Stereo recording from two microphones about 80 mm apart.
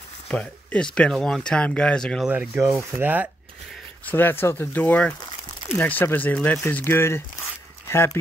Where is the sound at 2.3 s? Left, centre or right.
Centre.